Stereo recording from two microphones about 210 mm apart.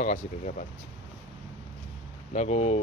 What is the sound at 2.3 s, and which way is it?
Speech, 30° left (ahead or behind).